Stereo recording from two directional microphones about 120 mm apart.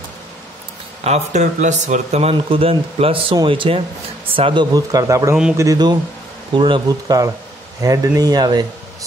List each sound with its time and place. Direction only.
1.0 s speech: 70° right (ahead or behind); by 4.6 s 50° right (ahead or behind)
4.7 s speech: 30° right (ahead or behind)
6.5 s speech: 40° right (ahead or behind)